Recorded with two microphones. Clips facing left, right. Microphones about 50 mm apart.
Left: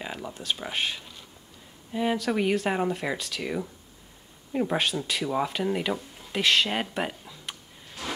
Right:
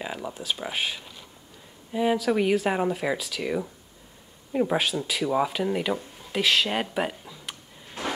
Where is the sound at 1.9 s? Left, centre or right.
Centre.